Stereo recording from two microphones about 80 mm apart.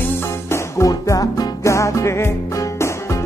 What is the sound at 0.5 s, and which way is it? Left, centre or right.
Music, left.